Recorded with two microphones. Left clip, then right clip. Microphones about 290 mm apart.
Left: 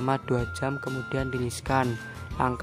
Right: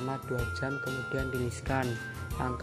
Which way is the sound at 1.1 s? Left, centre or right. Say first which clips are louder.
Left 5 dB; centre.